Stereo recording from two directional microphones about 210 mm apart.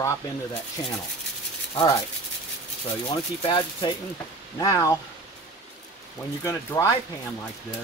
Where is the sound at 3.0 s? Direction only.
25° left (ahead or behind).